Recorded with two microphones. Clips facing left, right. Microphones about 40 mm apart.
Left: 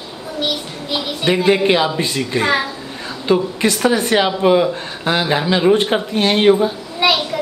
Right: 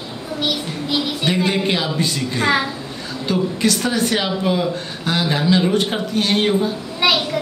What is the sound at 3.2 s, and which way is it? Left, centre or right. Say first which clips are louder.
Speech: left 3 dB; left.